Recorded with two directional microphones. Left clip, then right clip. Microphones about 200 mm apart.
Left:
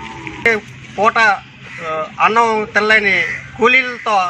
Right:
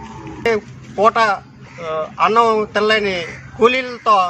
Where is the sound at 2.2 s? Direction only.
30° right (ahead or behind).